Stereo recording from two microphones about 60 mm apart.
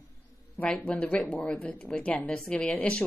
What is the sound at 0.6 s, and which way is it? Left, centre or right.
Speech, left.